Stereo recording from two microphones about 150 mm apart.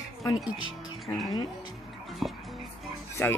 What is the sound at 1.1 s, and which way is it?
Speech, 20° left (ahead or behind).